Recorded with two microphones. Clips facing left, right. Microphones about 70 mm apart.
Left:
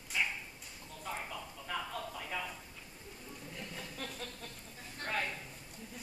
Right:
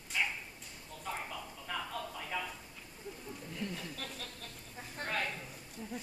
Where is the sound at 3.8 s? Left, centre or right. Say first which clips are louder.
Even; centre.